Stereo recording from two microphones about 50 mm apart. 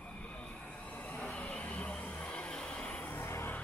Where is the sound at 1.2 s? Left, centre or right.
Centre.